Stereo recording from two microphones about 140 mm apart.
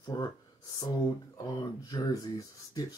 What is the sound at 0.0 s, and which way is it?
Speech, 25° left (ahead or behind).